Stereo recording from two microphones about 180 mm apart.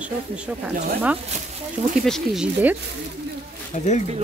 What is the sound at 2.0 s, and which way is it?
Speech, centre (ahead or behind).